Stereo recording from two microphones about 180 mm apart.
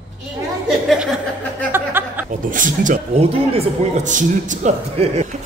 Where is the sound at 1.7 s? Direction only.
10° right (ahead or behind).